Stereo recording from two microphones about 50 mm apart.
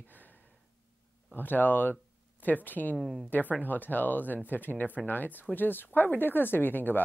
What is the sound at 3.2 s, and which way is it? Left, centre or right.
Speech, left.